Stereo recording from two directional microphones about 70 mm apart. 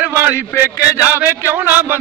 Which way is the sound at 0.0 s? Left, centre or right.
Right.